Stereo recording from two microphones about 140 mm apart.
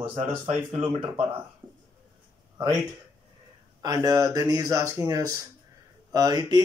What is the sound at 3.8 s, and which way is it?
A man's voice, 25° right (ahead or behind).